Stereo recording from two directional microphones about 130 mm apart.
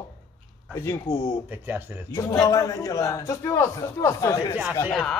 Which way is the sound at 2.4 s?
25° left (ahead or behind).